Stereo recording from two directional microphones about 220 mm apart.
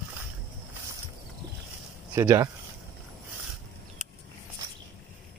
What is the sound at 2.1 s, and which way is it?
Speech, 15° right (ahead or behind).